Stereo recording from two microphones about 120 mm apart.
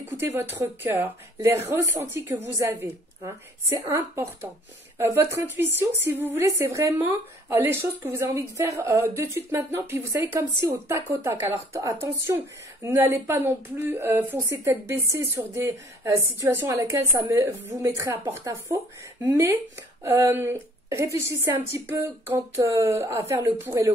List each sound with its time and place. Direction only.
0.2 s speech: 20° right (ahead or behind)